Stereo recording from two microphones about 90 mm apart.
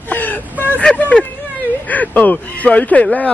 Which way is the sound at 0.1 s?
20° left (ahead or behind).